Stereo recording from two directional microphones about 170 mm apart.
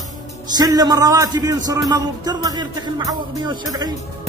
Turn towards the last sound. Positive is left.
turn(degrees=-25)  # may be behind; listen again after turning